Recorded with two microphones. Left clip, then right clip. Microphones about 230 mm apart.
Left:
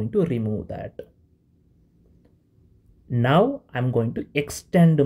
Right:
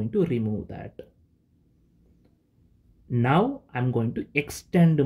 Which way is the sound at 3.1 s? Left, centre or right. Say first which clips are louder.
Left 4 dB; centre.